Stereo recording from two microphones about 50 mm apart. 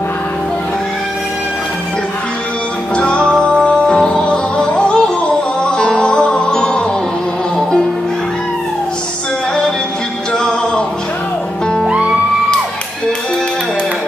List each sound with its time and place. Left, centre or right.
3.0 s music: centre
10.3 s music: centre